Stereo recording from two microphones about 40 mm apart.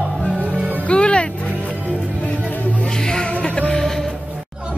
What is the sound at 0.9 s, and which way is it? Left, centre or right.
Speech, left.